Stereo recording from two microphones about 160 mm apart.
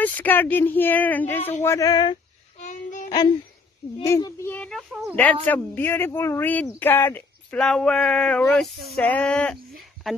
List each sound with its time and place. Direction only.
0.0 s speech: 10° left (ahead or behind)
1.6 s female singing: 20° left (ahead or behind)
2.6 s a sound: 50° left (ahead or behind)
4.0 s speech: 20° left (ahead or behind); by 10.1 s 5° left (ahead or behind)